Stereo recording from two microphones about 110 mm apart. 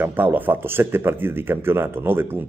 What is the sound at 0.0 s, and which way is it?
Speech, 15° right (ahead or behind).